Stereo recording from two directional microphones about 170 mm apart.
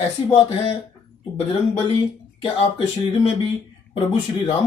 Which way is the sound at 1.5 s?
35° left (ahead or behind).